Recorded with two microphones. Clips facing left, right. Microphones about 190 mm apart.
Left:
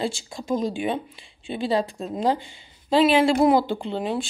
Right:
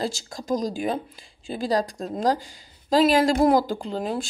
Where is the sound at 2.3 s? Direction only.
40° right (ahead or behind).